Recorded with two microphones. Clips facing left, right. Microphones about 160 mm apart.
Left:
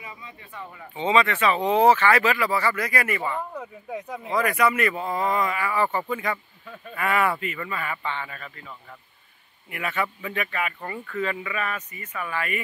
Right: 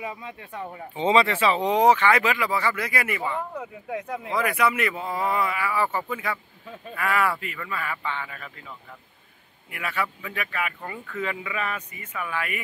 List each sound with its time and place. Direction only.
0.0 s speech: 60° right (ahead or behind)
0.5 s speech: 40° right (ahead or behind); by 8.5 s centre (ahead or behind)
9.7 s speech: centre (ahead or behind)